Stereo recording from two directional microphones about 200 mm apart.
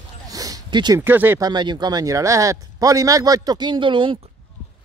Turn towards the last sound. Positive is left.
turn(degrees=-25)  # may be behind; listen again after turning